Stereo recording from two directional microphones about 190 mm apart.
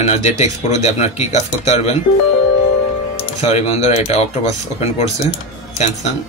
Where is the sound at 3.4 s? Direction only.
35° left (ahead or behind).